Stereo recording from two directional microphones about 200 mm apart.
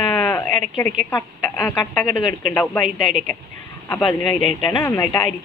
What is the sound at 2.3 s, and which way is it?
Speech, 40° right (ahead or behind).